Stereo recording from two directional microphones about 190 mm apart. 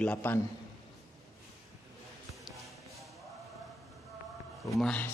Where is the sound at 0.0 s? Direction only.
10° left (ahead or behind).